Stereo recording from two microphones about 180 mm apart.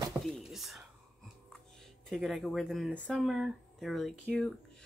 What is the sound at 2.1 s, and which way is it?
Speech, centre (ahead or behind).